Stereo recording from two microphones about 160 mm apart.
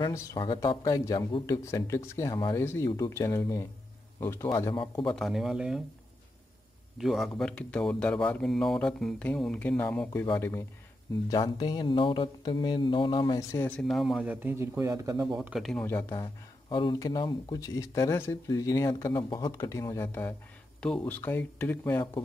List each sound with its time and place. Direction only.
0.1 s speech: 25° left (ahead or behind)
5.0 s speech: 5° left (ahead or behind)
7.0 s speech: centre (ahead or behind)
11.2 s speech: 30° left (ahead or behind)
13.7 s speech: 5° left (ahead or behind); by 15.2 s 20° right (ahead or behind)
15.3 s speech: 5° right (ahead or behind)
15.9 s speech: 15° left (ahead or behind)